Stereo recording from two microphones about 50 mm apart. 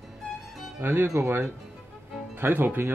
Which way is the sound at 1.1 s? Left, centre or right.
Right.